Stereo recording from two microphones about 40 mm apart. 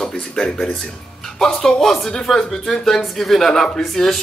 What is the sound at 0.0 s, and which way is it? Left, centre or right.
Speech, centre.